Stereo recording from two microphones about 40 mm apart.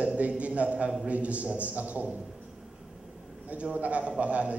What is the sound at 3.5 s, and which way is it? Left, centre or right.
A man's voice, right.